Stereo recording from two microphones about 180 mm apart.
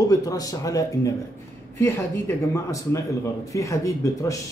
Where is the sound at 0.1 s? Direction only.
20° left (ahead or behind).